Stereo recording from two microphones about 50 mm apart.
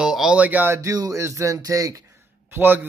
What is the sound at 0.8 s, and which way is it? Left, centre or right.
Speech, right.